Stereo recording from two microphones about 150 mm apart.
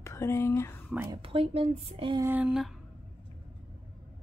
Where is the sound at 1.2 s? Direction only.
40° right (ahead or behind).